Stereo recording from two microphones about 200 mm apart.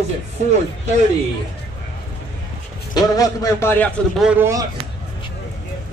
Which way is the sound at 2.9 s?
15° left (ahead or behind).